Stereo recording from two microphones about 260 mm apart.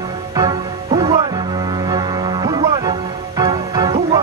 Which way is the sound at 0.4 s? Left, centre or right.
Centre.